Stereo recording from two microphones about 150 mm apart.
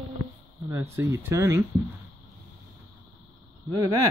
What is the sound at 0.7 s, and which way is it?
Speech, 15° right (ahead or behind).